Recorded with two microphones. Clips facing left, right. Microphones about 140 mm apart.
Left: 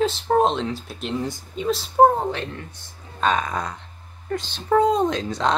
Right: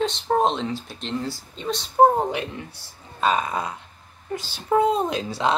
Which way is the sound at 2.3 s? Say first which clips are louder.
Even; 15° right (ahead or behind).